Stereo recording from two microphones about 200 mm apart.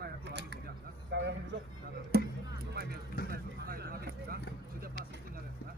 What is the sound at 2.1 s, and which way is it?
Music, 55° right (ahead or behind).